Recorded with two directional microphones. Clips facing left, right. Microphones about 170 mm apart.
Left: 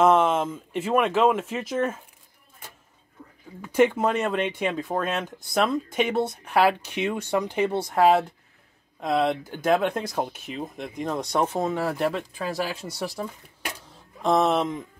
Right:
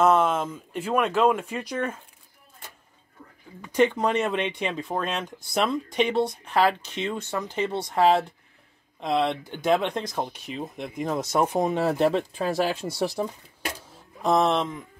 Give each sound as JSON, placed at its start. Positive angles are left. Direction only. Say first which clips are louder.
{"t": 0.0, "sound": "a sound", "louder": "left 1 dB", "side_deg": 5}
{"t": 0.7, "sound": "speech", "louder": "left 2 dB", "side_deg": 5}
{"t": 3.6, "sound": "speech", "louder": "left 1 dB", "side_deg": 5}
{"t": 11.4, "sound": "speech", "louder": "right 2 dB", "side_deg": -15}
{"t": 14.2, "sound": "speech", "louder": "left 1 dB", "side_deg": 0}